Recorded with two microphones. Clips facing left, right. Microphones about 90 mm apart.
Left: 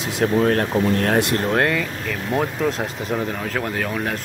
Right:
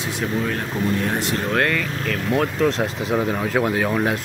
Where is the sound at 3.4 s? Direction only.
10° right (ahead or behind).